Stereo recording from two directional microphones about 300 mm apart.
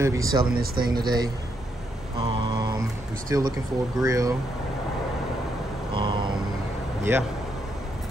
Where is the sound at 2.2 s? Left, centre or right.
Centre.